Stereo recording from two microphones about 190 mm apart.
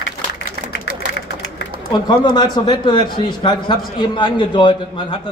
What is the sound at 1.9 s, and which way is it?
A man's voice, 25° left (ahead or behind).